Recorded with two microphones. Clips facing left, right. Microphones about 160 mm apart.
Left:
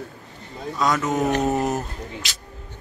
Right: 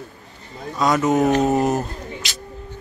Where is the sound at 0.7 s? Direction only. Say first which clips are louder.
Right 4 dB; 20° right (ahead or behind).